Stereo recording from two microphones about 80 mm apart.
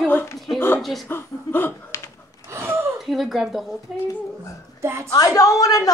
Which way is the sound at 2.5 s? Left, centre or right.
Right.